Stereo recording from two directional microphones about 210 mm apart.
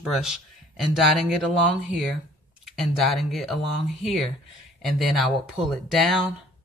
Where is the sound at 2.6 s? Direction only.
Centre (ahead or behind).